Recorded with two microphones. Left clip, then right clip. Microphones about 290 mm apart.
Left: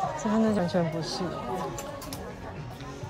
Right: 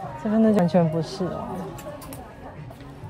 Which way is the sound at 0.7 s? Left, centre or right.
Centre.